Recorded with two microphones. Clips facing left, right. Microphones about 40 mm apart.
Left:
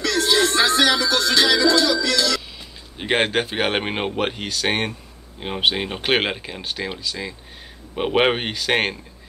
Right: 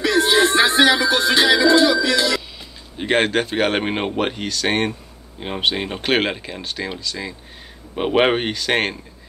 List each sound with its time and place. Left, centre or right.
0.0 s music: right
3.0 s speech: centre